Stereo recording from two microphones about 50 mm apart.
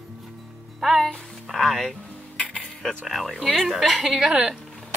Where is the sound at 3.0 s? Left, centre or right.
Centre.